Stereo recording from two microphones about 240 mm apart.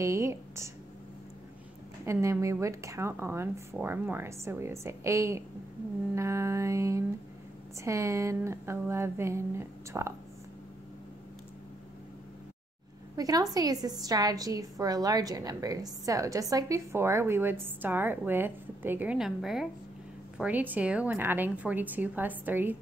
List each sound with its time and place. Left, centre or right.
0.0 s a woman's voice: centre
2.0 s a woman's voice: centre
13.1 s a woman's voice: centre